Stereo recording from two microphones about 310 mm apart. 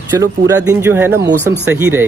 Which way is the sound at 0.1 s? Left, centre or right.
Centre.